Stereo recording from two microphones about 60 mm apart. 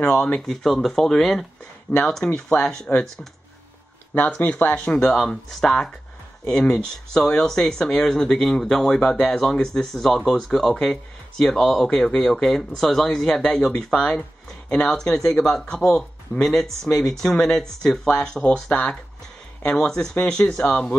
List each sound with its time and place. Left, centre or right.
0.5 s speech: centre
4.4 s speech: left
4.8 s speech: centre